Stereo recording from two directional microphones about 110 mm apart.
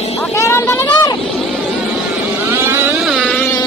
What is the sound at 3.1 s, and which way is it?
Music, 5° right (ahead or behind).